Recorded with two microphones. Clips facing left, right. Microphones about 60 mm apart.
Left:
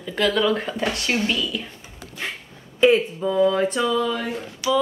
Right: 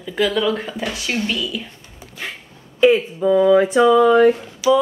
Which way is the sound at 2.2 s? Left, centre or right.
Centre.